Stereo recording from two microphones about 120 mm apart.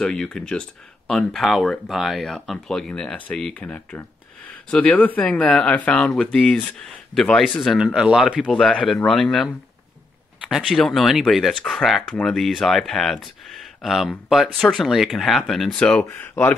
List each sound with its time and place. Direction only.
0.0 s speech: 5° left (ahead or behind)
16.1 s speech: 20° left (ahead or behind)